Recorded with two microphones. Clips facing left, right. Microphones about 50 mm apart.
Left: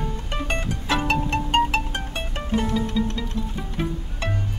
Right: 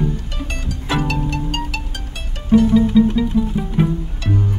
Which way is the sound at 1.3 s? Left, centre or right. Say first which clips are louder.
Left 3 dB; left.